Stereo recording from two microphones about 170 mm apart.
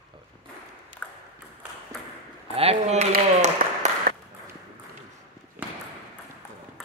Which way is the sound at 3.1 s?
45° right (ahead or behind).